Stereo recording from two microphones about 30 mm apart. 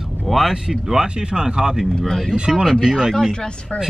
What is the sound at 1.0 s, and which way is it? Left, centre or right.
Speech, right.